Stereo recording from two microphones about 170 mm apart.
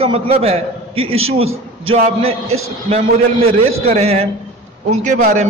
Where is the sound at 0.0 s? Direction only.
35° right (ahead or behind).